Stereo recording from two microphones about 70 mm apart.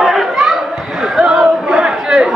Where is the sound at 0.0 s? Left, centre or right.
Centre.